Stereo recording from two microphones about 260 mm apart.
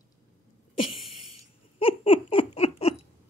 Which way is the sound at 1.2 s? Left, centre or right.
Left.